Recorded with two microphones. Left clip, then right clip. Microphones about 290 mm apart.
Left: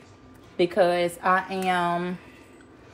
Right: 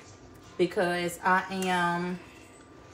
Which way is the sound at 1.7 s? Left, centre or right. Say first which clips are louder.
Left 2 dB; left.